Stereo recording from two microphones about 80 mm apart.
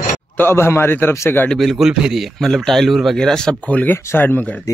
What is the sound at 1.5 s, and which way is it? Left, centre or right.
A man's voice, centre.